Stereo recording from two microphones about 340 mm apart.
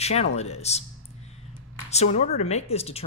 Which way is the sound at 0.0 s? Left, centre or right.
Centre.